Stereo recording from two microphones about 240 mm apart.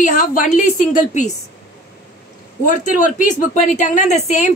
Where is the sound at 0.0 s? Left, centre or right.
Left.